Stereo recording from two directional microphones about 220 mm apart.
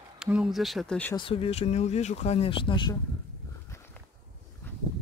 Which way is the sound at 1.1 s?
25° left (ahead or behind).